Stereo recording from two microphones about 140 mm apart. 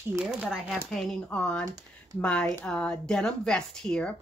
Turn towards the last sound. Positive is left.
turn(degrees=5)  # may be behind; listen again after turning